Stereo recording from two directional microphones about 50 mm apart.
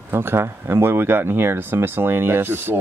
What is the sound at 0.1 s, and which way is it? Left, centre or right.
Speech, right.